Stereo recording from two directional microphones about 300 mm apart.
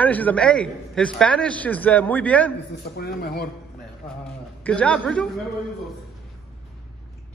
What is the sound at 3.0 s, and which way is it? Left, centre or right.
Speech, left.